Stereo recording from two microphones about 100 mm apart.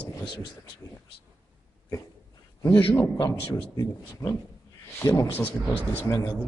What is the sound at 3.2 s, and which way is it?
A man's voice, 35° left (ahead or behind).